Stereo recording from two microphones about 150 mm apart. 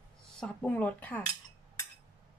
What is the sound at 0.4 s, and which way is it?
Speech, 5° left (ahead or behind).